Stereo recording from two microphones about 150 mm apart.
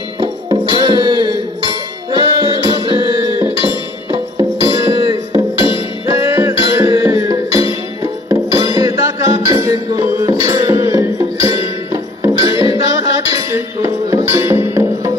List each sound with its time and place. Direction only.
0.2 s music: 30° right (ahead or behind)